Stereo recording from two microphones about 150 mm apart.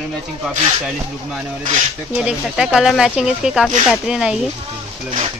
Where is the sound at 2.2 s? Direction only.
5° right (ahead or behind).